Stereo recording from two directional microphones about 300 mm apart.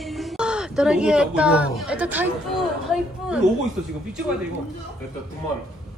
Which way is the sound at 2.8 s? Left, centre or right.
Centre.